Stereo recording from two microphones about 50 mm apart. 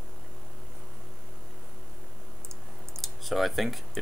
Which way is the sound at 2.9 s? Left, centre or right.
Centre.